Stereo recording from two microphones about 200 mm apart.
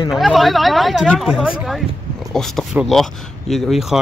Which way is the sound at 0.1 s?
Centre (ahead or behind).